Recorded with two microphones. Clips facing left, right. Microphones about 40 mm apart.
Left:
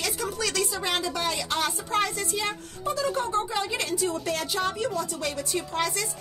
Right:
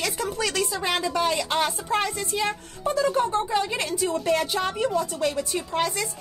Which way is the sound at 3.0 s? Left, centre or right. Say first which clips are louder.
Right 4 dB; right.